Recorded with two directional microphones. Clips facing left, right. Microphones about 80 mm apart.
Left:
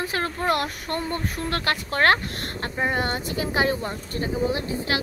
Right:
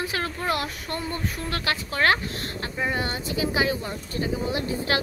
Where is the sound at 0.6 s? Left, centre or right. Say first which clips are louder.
Left 3 dB; left.